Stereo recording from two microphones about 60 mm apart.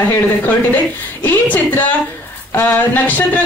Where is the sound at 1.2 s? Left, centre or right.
Left.